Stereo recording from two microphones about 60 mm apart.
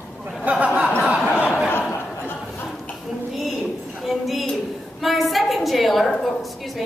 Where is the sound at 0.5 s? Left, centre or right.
Right.